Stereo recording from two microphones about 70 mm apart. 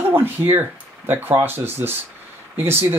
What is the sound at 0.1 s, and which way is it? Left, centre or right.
Speech, right.